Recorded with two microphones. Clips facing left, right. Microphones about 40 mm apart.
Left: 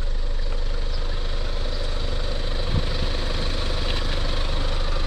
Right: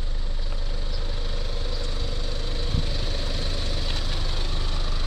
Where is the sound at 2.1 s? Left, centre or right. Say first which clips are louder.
Left 3 dB; centre.